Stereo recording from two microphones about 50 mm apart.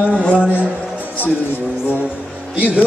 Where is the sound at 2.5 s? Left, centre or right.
Right.